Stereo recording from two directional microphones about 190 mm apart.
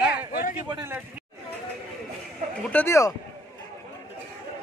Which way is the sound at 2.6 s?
10° left (ahead or behind).